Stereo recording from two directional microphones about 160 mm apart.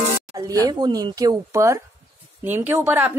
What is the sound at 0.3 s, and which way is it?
A woman's voice, 20° right (ahead or behind).